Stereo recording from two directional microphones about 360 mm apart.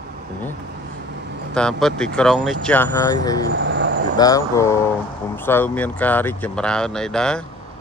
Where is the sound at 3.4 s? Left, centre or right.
Right.